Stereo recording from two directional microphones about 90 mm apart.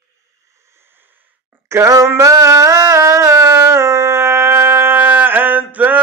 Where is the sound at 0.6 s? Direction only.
30° right (ahead or behind).